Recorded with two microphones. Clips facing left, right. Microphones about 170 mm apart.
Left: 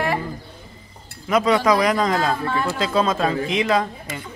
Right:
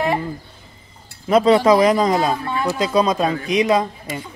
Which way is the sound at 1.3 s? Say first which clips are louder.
Right 4 dB; 30° right (ahead or behind).